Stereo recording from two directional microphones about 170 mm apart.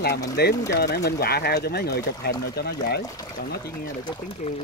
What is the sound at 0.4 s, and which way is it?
Speech, 70° left (ahead or behind).